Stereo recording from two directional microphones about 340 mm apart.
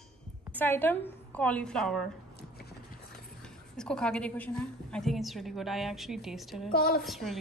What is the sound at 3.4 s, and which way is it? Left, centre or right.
A woman's voice, centre.